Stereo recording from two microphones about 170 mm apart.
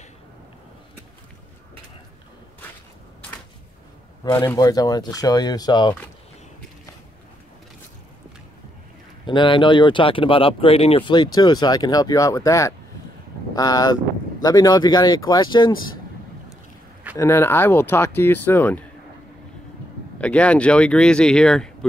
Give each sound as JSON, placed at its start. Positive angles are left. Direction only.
{"t": 4.2, "sound": "speech", "side_deg": 20}
{"t": 9.2, "sound": "speech", "side_deg": 30}
{"t": 17.2, "sound": "speech", "side_deg": 15}
{"t": 20.2, "sound": "speech", "side_deg": 5}